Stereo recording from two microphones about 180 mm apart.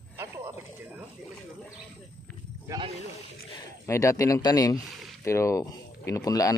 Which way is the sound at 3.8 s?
15° left (ahead or behind).